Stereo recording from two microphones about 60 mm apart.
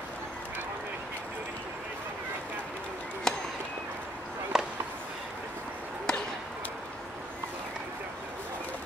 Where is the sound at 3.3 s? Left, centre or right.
Centre.